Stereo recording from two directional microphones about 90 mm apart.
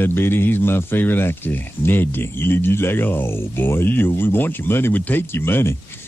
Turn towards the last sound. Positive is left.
turn(degrees=25)  # may be behind; listen again after turning